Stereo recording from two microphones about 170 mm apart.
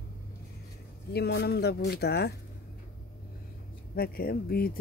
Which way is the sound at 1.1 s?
70° left (ahead or behind).